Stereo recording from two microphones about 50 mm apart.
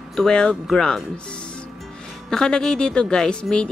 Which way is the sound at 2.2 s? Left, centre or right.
Centre.